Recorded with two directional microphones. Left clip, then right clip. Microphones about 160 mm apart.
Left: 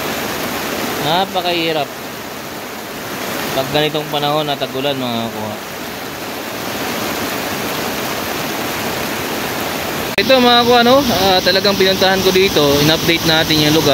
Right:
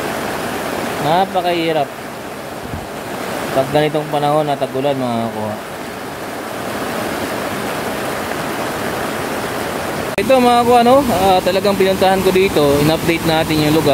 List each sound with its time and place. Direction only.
1.0 s speech: 15° right (ahead or behind)
3.7 s speech: 20° right (ahead or behind)
10.1 s speech: centre (ahead or behind)